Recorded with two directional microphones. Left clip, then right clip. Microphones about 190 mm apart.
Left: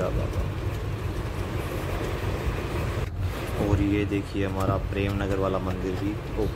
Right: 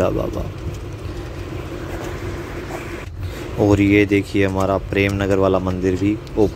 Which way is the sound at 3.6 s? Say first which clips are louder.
Right 13 dB; 40° right (ahead or behind).